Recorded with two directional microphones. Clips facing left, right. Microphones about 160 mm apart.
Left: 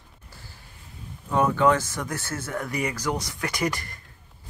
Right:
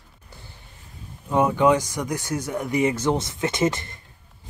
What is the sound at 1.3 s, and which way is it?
Speech, 15° right (ahead or behind).